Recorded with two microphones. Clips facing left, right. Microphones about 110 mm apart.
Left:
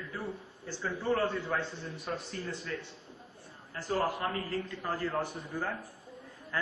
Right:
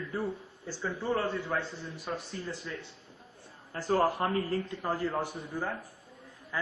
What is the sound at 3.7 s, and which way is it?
Speech, 40° right (ahead or behind).